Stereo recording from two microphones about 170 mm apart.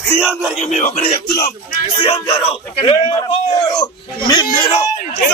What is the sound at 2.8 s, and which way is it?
Speech, 30° left (ahead or behind).